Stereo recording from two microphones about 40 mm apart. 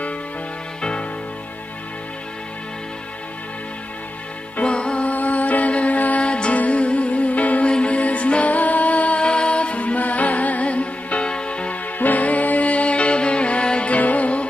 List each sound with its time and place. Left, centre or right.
4.6 s music: left
5.1 s music: left
6.2 s music: left
7.6 s music: left
12.0 s music: left